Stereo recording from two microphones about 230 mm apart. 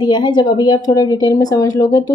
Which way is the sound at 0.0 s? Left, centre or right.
Centre.